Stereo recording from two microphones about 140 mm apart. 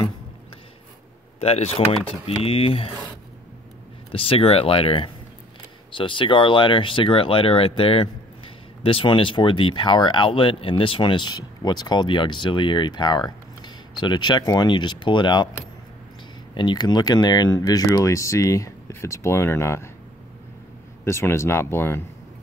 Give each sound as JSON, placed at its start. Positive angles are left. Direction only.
{"t": 1.4, "sound": "speech", "side_deg": 50}
{"t": 4.1, "sound": "speech", "side_deg": 40}
{"t": 16.5, "sound": "speech", "side_deg": 30}
{"t": 21.0, "sound": "speech", "side_deg": 20}